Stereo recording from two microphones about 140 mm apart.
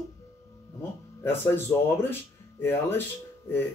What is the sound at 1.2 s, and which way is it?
Speech, 15° left (ahead or behind).